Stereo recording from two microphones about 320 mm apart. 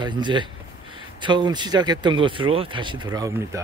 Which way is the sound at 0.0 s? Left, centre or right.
Centre.